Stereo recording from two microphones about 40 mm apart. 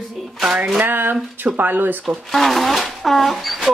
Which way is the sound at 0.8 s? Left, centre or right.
Right.